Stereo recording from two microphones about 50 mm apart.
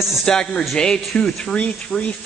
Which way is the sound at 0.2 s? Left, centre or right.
Centre.